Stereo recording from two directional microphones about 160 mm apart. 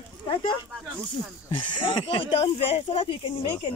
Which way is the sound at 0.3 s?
30° left (ahead or behind).